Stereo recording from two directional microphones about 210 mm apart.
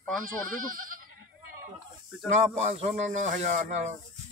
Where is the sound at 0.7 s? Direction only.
40° right (ahead or behind).